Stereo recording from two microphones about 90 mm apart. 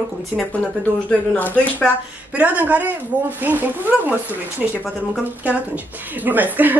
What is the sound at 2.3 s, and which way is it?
Speech, 20° right (ahead or behind).